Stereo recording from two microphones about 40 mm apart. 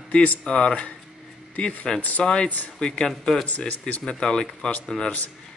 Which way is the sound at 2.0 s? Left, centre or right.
Left.